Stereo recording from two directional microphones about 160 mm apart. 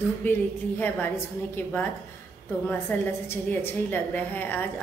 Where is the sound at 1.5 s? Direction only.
10° left (ahead or behind).